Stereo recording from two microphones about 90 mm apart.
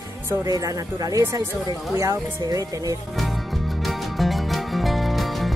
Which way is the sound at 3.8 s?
Centre (ahead or behind).